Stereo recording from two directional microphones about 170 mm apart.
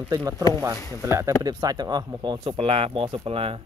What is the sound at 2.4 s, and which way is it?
Speech, 35° right (ahead or behind).